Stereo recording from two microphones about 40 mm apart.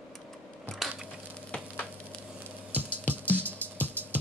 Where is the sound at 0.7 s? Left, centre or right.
Centre.